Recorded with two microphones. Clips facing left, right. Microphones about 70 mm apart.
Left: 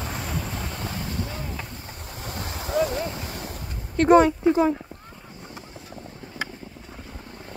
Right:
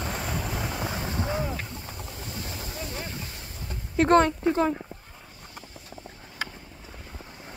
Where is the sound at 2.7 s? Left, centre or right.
Left.